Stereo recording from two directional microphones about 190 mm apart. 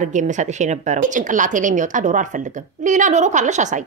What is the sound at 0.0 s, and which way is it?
Speech, 40° right (ahead or behind).